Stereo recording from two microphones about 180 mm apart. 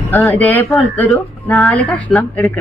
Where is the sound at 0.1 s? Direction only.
10° left (ahead or behind).